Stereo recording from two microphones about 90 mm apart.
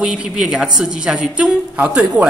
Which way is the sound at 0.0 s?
10° right (ahead or behind).